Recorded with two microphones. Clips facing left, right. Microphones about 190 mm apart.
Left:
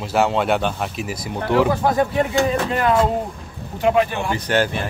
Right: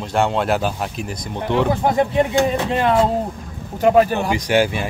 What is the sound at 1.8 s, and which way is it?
Speech, 20° right (ahead or behind).